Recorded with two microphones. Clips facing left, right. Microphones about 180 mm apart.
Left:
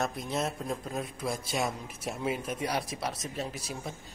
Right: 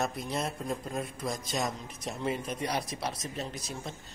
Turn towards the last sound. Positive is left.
turn(degrees=5)  # may be behind; listen again after turning